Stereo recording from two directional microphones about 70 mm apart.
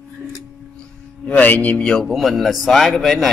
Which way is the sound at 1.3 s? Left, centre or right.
Left.